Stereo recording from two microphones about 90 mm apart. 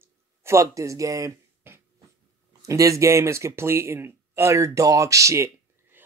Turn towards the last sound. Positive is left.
turn(degrees=-35)  # may be behind; listen again after turning